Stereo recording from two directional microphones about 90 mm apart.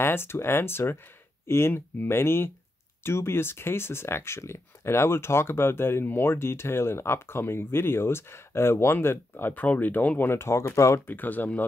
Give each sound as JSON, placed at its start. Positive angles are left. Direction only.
{"t": 0.0, "sound": "speech", "side_deg": 25}
{"t": 11.1, "sound": "speech", "side_deg": 20}